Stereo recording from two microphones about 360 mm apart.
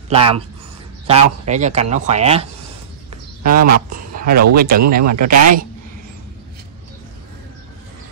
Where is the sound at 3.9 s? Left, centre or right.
Right.